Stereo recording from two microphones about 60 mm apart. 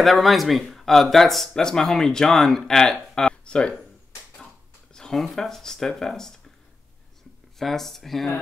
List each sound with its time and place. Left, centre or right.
0.0 s speech: centre
4.9 s a sound: centre
5.2 s speech: centre
7.5 s speech: centre